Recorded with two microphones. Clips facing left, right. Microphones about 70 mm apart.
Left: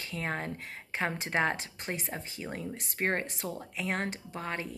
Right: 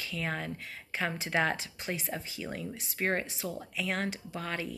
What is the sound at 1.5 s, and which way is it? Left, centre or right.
Speech, left.